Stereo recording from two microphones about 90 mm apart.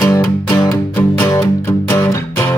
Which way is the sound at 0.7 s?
30° left (ahead or behind).